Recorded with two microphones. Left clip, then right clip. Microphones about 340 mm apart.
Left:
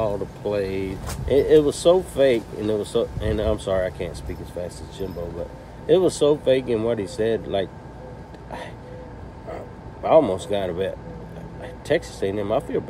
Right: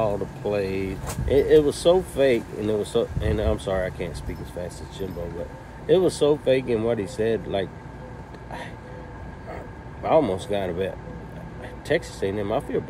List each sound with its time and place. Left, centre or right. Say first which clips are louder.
0.0 s speech: even; centre
5.9 s speech: left 2 dB; centre
10.0 s speech: left 4 dB; centre